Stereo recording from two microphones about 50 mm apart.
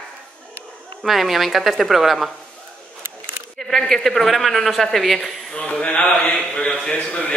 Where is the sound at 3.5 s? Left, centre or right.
Centre.